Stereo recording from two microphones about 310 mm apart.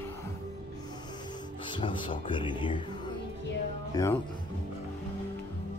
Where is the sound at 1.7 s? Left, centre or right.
Centre.